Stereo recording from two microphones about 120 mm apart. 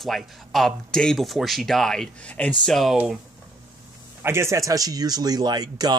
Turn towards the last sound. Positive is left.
turn(degrees=-35)  # may be behind; listen again after turning